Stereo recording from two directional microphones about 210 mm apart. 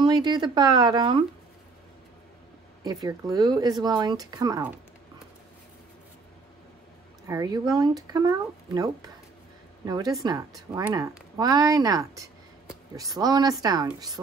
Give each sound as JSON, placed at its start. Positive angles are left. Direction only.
{"t": 0.0, "sound": "speech", "side_deg": -20}
{"t": 2.8, "sound": "speech", "side_deg": -15}
{"t": 7.2, "sound": "speech", "side_deg": -20}